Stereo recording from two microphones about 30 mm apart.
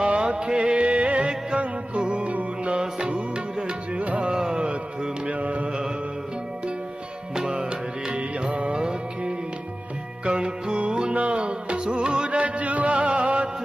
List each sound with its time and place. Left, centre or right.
0.0 s music: right
2.8 s music: right
4.4 s music: right
5.2 s carnatic music: right
8.1 s music: right
10.2 s music: right
11.1 s music: right
12.3 s music: right
12.9 s music: right